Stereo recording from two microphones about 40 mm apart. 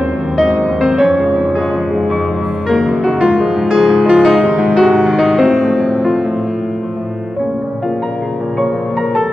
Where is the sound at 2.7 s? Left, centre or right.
Centre.